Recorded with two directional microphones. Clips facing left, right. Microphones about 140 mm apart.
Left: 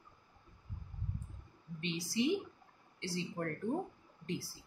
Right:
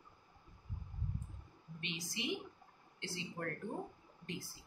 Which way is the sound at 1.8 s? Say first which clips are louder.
Left 10 dB; 35° left (ahead or behind).